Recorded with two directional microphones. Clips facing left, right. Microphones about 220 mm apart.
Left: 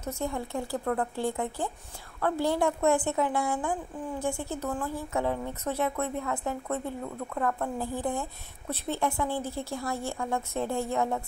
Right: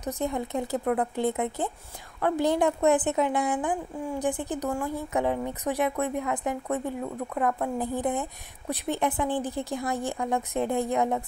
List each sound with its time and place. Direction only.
0.0 s speech: 20° right (ahead or behind)